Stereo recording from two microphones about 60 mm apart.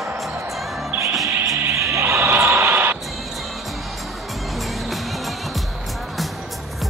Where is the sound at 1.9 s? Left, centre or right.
Right.